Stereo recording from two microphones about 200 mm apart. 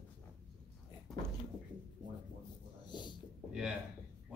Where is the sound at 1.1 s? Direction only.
Centre (ahead or behind).